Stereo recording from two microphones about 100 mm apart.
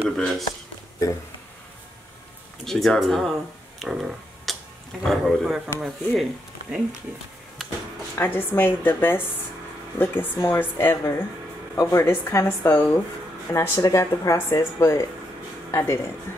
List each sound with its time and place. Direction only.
0.2 s speech: centre (ahead or behind)
2.6 s speech: 5° left (ahead or behind)
3.8 s a sound: centre (ahead or behind)
5.0 s speech: centre (ahead or behind)
8.2 s speech: 20° left (ahead or behind)